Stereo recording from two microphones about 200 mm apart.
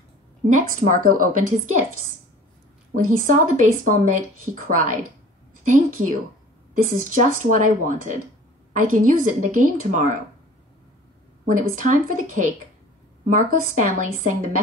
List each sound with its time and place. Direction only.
0.5 s speech: 40° right (ahead or behind)
3.0 s a woman's voice: 40° right (ahead or behind)
11.4 s speech: 40° right (ahead or behind)